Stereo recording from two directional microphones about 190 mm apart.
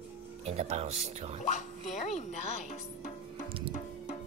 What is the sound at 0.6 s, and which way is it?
Speech, 35° right (ahead or behind).